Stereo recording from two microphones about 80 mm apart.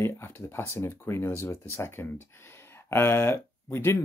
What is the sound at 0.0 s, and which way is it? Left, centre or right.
Speech, left.